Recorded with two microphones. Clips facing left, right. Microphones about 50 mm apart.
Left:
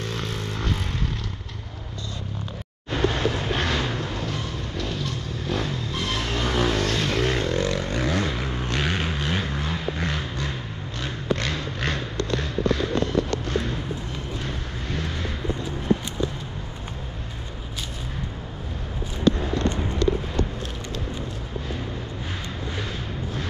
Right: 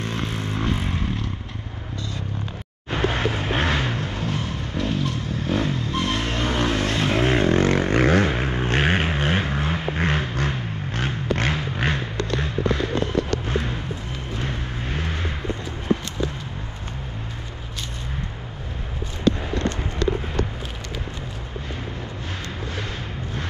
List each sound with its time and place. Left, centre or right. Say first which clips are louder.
0.0 s vehicle: right 2 dB; centre
3.1 s vehicle: right 1 dB; right
7.5 s vehicle: right 6 dB; right
11.3 s a sound: right 4 dB; right